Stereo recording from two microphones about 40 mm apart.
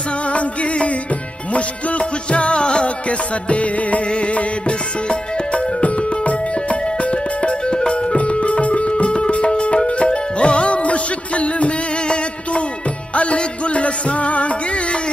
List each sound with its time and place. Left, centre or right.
1.5 s music: left
5.5 s music: left